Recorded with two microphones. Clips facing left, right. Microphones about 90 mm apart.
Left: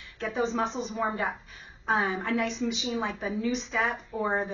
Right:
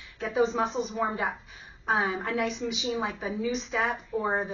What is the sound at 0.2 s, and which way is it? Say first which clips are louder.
A woman's voice: right 2 dB; 5° right (ahead or behind).